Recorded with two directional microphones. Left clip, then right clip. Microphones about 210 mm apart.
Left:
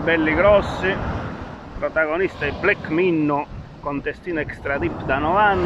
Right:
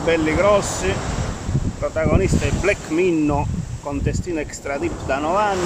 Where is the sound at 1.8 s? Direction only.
15° right (ahead or behind).